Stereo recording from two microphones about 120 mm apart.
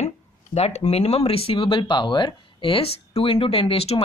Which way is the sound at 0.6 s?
60° left (ahead or behind).